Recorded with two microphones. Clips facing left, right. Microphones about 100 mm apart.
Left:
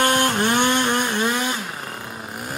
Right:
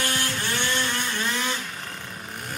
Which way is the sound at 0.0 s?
55° left (ahead or behind).